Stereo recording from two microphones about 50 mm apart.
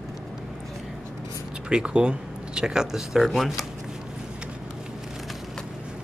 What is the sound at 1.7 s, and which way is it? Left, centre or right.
Speech, centre.